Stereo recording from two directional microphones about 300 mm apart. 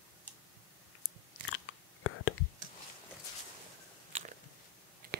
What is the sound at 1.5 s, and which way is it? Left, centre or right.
Whispering, left.